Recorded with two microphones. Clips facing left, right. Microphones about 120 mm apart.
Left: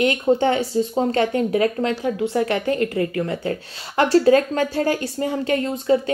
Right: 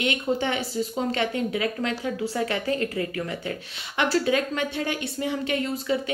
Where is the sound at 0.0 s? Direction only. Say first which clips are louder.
Left 8 dB; 35° left (ahead or behind).